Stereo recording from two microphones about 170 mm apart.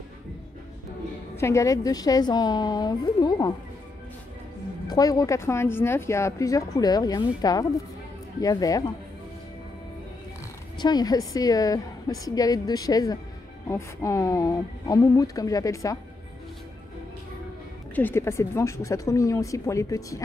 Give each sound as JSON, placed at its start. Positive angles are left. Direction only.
{"t": 1.3, "sound": "speech", "side_deg": 15}
{"t": 4.8, "sound": "speech", "side_deg": 20}
{"t": 10.8, "sound": "speech", "side_deg": 25}
{"t": 17.9, "sound": "speech", "side_deg": 15}